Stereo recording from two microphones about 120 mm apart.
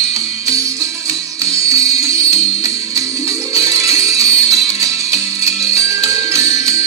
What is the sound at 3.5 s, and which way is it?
Music, 25° right (ahead or behind).